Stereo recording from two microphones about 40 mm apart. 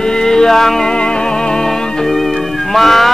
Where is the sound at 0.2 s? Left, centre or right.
Centre.